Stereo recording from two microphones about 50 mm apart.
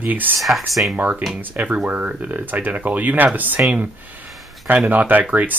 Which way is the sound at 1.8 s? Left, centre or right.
Right.